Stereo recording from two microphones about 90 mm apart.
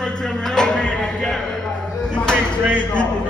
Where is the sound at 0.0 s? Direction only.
10° left (ahead or behind).